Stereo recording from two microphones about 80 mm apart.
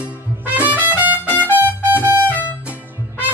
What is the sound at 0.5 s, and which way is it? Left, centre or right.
Trumpet, right.